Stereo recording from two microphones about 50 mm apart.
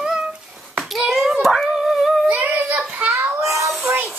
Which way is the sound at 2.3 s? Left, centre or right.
Right.